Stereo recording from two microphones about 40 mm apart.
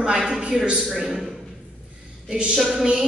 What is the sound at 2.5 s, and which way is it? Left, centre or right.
Speech, centre.